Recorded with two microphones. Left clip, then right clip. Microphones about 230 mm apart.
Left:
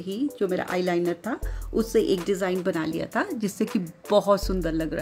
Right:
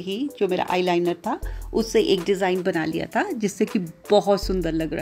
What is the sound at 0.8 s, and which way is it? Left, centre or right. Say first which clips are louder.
Speech: right 3 dB; left.